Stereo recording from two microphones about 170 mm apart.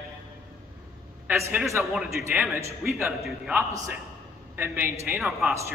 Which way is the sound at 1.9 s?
Centre (ahead or behind).